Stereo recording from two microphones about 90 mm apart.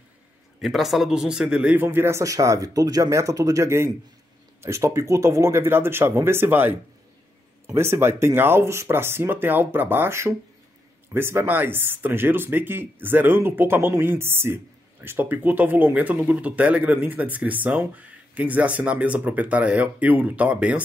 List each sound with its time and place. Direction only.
0.6 s a man's voice: 5° right (ahead or behind)
1.8 s speech: 25° right (ahead or behind)
7.7 s speech: 30° right (ahead or behind)